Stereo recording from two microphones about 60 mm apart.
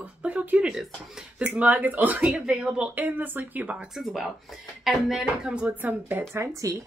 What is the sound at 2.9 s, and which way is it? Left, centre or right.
Speech, right.